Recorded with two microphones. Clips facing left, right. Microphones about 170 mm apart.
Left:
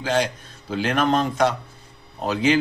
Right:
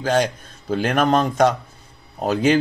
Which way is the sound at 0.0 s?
45° right (ahead or behind).